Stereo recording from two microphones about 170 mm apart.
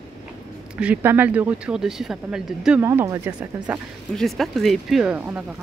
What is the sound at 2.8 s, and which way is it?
Speech, 15° right (ahead or behind).